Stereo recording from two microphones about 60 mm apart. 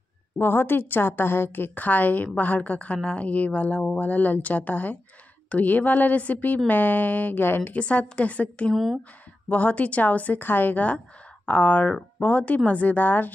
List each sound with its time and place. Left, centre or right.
0.4 s a woman's voice: left
7.6 s speech: left
8.7 s speech: centre
9.5 s speech: left